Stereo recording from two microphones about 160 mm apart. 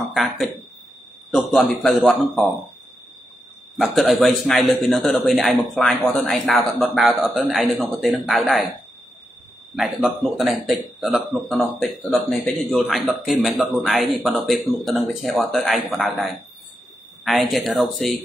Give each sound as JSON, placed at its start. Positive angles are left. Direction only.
{"t": 0.1, "sound": "a man's voice", "side_deg": 0}
{"t": 3.7, "sound": "a man's voice", "side_deg": 0}
{"t": 9.8, "sound": "a man's voice", "side_deg": 0}
{"t": 17.2, "sound": "a man's voice", "side_deg": 0}